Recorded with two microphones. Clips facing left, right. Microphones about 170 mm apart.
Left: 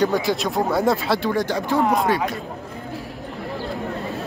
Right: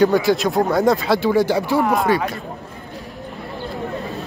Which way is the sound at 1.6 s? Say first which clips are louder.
Right 1 dB; 20° left (ahead or behind).